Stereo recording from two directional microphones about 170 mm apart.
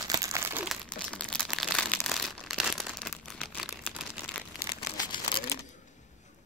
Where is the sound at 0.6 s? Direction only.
5° left (ahead or behind).